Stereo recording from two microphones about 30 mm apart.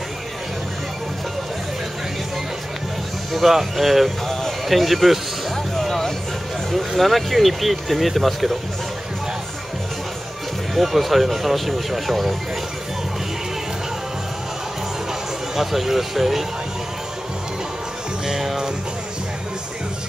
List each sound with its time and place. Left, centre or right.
3.3 s speech: centre
4.3 s a sound: centre
4.6 s speech: centre
5.8 s music: centre
7.0 s speech: centre
10.7 s speech: centre
15.5 s speech: centre